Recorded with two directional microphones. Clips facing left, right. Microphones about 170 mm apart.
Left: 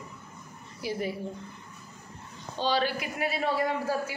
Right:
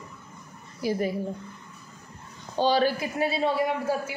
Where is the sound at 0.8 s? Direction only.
40° right (ahead or behind).